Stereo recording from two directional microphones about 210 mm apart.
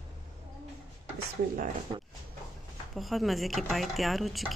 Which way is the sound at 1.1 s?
40° right (ahead or behind).